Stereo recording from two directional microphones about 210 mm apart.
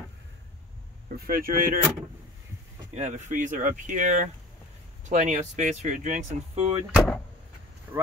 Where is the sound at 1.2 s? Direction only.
40° right (ahead or behind).